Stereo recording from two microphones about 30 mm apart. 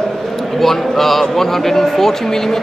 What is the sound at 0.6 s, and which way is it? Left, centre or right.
Speech, centre.